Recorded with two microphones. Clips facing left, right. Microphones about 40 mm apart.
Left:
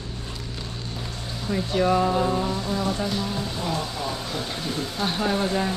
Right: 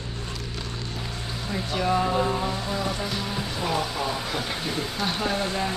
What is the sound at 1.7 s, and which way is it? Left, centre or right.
Music, centre.